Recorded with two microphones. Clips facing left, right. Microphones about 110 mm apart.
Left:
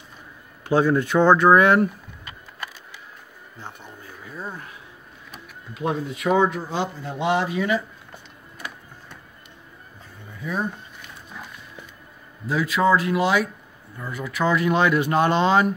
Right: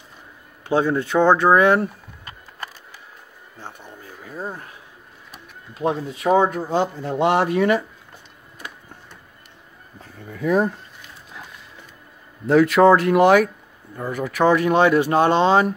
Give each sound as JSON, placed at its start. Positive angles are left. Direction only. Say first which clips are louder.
{"t": 0.7, "sound": "speech", "louder": "left 1 dB", "side_deg": -25}
{"t": 2.2, "sound": "music", "louder": "right 1 dB", "side_deg": -40}
{"t": 4.0, "sound": "a sound", "louder": "right 4 dB", "side_deg": -40}
{"t": 5.8, "sound": "speech", "louder": "right 3 dB", "side_deg": -35}
{"t": 10.3, "sound": "speech", "louder": "right 8 dB", "side_deg": -80}
{"t": 12.4, "sound": "speech", "louder": "right 7 dB", "side_deg": -60}
{"t": 13.9, "sound": "speech", "louder": "right 5 dB", "side_deg": -45}